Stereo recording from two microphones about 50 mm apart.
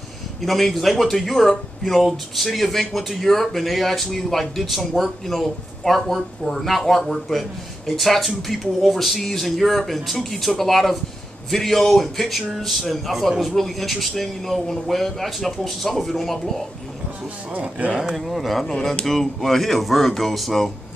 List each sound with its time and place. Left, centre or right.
0.4 s speech: centre
17.5 s speech: right
18.0 s speech: centre